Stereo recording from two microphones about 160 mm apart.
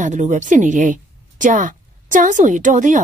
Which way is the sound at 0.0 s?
50° right (ahead or behind).